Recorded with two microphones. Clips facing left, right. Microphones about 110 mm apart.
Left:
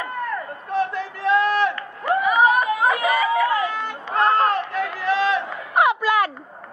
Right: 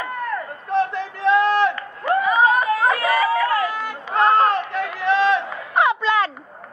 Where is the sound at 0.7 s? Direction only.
20° right (ahead or behind).